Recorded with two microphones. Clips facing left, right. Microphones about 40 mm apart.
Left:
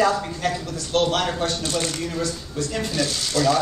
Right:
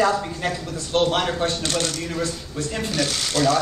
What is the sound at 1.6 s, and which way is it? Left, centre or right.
Speech, right.